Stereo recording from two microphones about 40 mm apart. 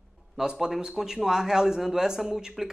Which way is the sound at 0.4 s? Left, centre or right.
Centre.